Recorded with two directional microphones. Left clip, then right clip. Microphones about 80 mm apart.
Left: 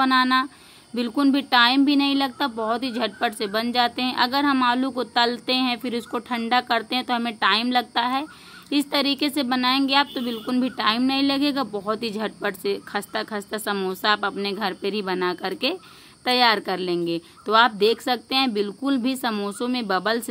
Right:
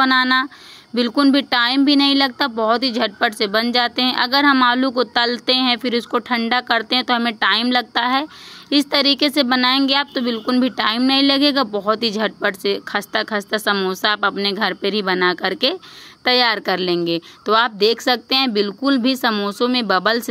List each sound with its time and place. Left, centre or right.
0.0 s a woman's voice: right